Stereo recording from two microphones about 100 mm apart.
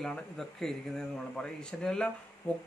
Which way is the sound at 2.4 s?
30° left (ahead or behind).